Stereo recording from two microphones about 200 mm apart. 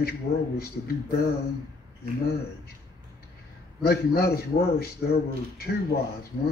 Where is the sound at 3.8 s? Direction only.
50° left (ahead or behind).